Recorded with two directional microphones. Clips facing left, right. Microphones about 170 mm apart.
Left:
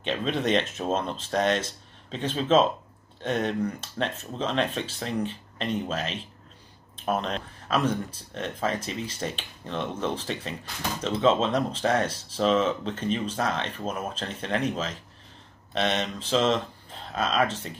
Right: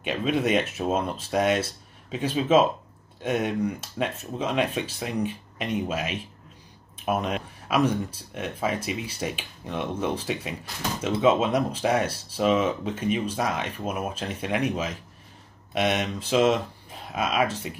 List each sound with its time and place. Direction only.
0.0 s speech: 5° right (ahead or behind)